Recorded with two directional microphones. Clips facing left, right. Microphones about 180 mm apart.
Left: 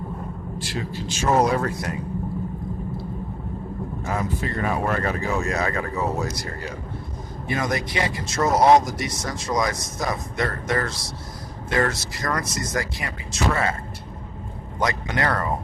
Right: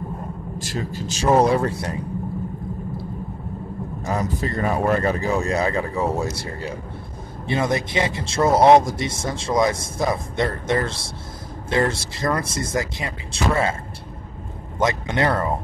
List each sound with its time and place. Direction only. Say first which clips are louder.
0.6 s speech: right 2 dB; 45° right (ahead or behind)
4.0 s speech: right 3 dB; 40° right (ahead or behind)
14.8 s speech: right 3 dB; 25° right (ahead or behind)